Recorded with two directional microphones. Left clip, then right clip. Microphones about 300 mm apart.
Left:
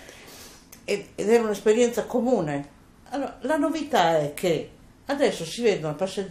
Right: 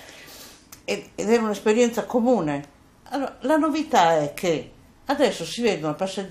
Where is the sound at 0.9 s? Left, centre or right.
Centre.